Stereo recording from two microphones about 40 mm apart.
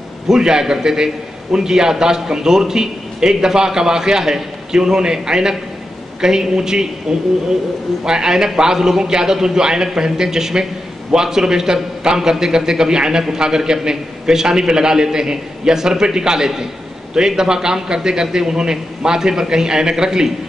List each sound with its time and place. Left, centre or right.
0.3 s a man's voice: centre